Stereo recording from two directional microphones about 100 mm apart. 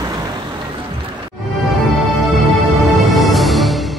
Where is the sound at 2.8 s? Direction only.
Centre (ahead or behind).